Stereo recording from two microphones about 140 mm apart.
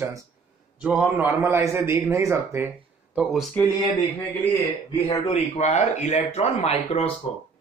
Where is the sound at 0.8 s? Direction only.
5° right (ahead or behind).